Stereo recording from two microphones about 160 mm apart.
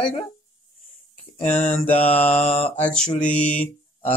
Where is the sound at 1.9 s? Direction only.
40° left (ahead or behind).